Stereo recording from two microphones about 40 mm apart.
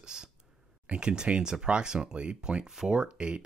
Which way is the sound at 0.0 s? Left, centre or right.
Centre.